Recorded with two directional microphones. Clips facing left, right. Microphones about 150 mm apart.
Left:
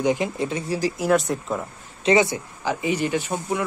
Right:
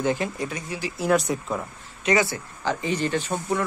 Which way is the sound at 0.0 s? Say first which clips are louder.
Left 3 dB; 15° left (ahead or behind).